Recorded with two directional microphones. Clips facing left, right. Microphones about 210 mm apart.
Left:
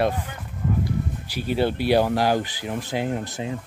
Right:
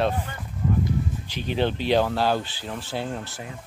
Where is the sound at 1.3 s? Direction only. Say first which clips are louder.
Left 2 dB; 10° left (ahead or behind).